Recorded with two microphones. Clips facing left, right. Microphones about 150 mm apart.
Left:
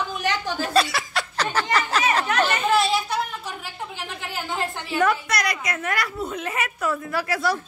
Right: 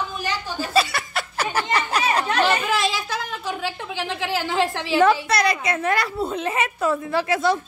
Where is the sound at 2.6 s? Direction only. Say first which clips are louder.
Left 3 dB; 90° right.